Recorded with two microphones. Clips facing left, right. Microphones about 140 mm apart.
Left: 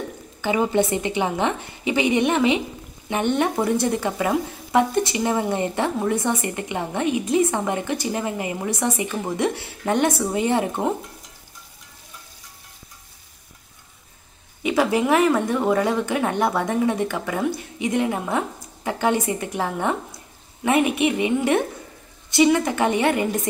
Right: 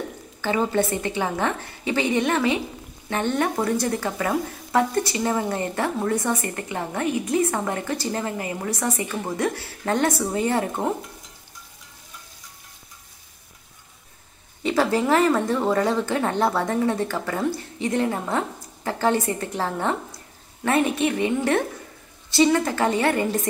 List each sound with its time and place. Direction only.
0.4 s a woman's voice: 15° left (ahead or behind)
14.6 s speech: 10° left (ahead or behind)